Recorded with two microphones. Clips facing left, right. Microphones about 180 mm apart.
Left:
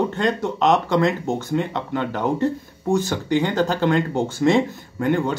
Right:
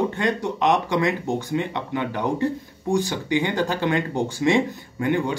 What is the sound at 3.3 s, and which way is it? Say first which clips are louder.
Speech: left 3 dB; 15° right (ahead or behind).